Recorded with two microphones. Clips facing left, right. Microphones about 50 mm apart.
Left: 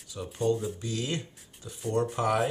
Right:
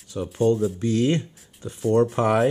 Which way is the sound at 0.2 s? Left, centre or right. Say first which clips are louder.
Right 8 dB; right.